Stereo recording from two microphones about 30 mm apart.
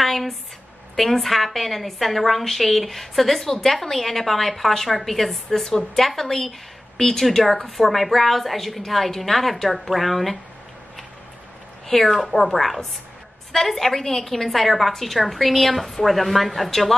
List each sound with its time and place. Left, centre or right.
0.0 s a sound: centre
0.9 s a woman's voice: centre
1.2 s a woman's voice: centre
11.9 s a woman's voice: centre